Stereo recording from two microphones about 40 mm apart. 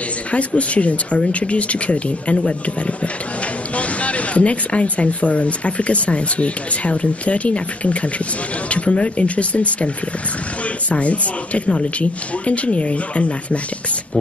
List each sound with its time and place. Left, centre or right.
0.3 s speech: left
3.7 s speech: left
10.9 s speech: left